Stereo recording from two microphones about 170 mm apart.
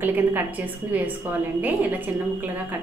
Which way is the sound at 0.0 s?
10° right (ahead or behind).